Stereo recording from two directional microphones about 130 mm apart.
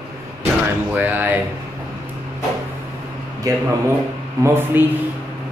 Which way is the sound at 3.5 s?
25° right (ahead or behind).